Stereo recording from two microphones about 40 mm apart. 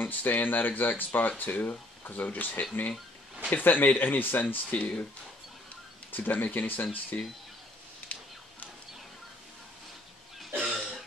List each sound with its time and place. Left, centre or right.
0.0 s speech: left
4.7 s speech: left
6.1 s speech: left
10.6 s a sound: centre